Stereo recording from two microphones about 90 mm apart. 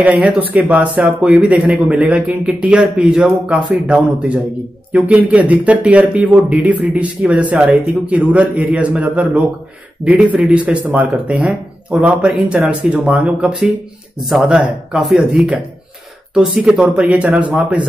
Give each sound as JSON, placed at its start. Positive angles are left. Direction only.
{"t": 0.2, "sound": "speech", "side_deg": -15}